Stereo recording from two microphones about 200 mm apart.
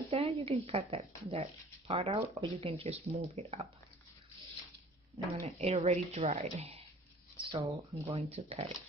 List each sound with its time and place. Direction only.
0.1 s a sound: 30° right (ahead or behind)
0.5 s speech: 30° right (ahead or behind)
5.3 s speech: 30° right (ahead or behind)
7.3 s speech: 20° right (ahead or behind)
8.4 s speech: 25° right (ahead or behind)